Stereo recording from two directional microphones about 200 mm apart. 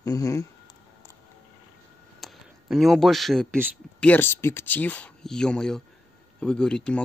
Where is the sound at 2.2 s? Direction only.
Centre (ahead or behind).